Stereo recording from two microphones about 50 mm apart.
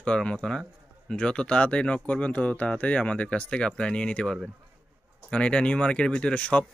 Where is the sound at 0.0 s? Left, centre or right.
Left.